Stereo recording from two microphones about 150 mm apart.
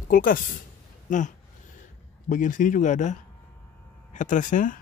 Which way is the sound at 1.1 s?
55° left (ahead or behind).